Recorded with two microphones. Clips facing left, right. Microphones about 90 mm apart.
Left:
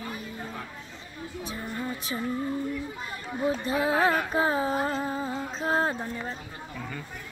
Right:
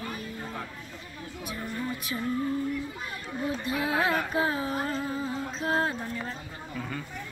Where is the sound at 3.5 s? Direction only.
35° left (ahead or behind).